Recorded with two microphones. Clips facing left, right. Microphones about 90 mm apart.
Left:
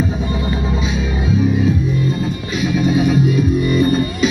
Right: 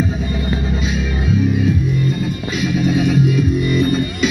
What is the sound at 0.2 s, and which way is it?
Music, 30° left (ahead or behind).